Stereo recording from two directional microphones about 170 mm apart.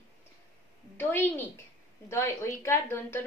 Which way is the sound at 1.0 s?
10° left (ahead or behind).